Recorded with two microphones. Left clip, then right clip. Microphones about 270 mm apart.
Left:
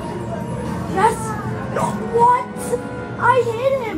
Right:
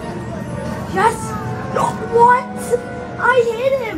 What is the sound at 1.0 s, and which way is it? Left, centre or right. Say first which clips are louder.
Speech: right 1 dB; centre.